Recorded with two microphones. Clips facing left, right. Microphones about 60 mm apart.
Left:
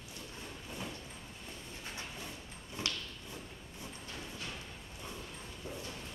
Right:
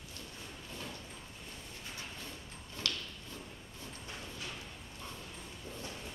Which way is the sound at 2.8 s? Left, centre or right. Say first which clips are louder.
Even; left.